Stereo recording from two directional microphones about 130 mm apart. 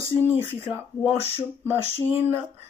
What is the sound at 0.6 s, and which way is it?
Speech, 20° right (ahead or behind).